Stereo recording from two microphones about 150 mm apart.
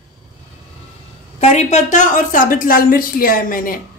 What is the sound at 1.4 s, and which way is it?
A woman's voice, 45° left (ahead or behind).